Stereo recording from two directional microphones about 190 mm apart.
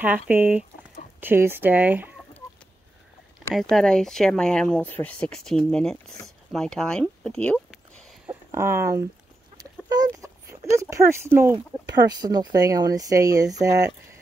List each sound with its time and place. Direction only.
0.0 s speech: 10° right (ahead or behind)
3.5 s speech: centre (ahead or behind)
7.7 s a sound: centre (ahead or behind)
8.5 s speech: 15° right (ahead or behind)
9.6 s a sound: 20° right (ahead or behind)
11.5 s speech: 20° right (ahead or behind)